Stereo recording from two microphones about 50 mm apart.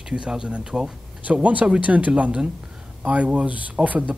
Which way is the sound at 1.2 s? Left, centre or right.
Right.